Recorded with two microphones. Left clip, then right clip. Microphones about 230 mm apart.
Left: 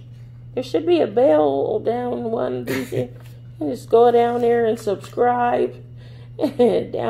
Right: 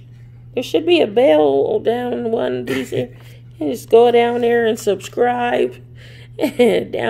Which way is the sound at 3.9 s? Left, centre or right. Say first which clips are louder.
Right 3 dB; right.